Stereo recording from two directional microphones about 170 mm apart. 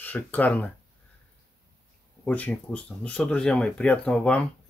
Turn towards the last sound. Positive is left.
turn(degrees=5)  # may be behind; listen again after turning